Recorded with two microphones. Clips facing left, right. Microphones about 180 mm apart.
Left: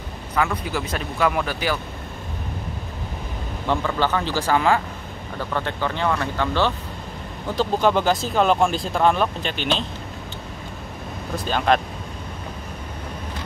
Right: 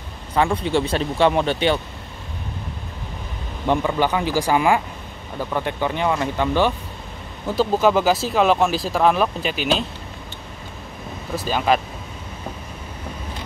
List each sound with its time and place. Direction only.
0.3 s speech: 30° right (ahead or behind)
3.6 s speech: 15° right (ahead or behind)
11.3 s speech: 5° right (ahead or behind)